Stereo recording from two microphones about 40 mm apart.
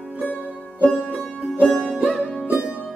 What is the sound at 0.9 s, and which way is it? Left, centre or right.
Music, right.